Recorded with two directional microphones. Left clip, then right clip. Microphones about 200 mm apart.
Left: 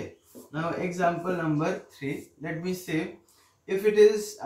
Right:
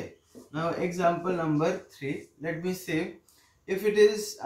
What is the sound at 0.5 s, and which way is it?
Speech, 20° right (ahead or behind).